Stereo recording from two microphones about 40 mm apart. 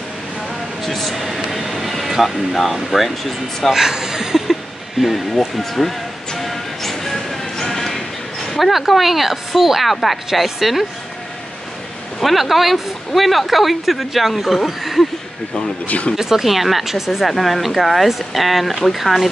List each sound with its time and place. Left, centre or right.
0.8 s speech: centre
3.7 s a sound: centre
5.0 s music: centre
8.5 s speech: centre
12.2 s speech: centre
15.9 s speech: left
16.2 s speech: centre